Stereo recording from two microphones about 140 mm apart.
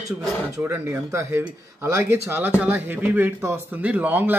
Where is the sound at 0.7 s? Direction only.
15° right (ahead or behind).